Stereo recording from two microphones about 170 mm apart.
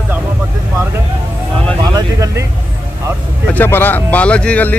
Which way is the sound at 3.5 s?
10° left (ahead or behind).